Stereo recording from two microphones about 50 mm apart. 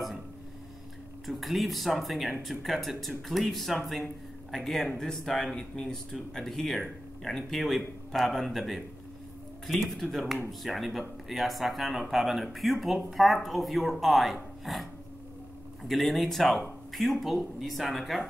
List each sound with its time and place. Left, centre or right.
1.2 s speech: centre